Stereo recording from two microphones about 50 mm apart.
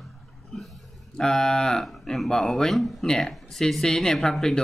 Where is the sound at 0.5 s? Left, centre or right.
Centre.